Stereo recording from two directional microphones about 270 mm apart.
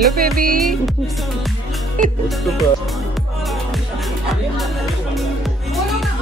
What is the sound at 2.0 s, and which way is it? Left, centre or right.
Speech, right.